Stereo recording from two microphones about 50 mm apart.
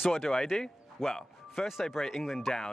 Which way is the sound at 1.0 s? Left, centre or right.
Centre.